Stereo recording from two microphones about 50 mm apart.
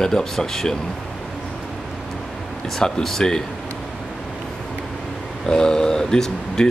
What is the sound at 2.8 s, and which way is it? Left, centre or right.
Speech, centre.